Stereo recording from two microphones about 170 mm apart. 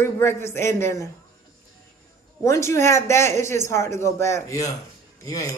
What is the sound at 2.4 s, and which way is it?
Speech, 15° left (ahead or behind).